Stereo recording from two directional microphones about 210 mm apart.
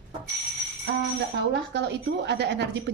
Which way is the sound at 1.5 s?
55° right (ahead or behind).